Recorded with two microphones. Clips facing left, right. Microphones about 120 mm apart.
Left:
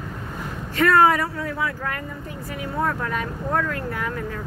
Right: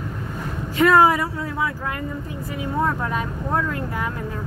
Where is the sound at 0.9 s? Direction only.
10° right (ahead or behind).